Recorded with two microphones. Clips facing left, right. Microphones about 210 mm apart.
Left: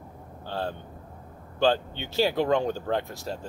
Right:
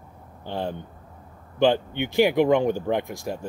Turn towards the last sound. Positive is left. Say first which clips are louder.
# right 4 dB
turn(degrees=-15)  # may be behind; listen again after turning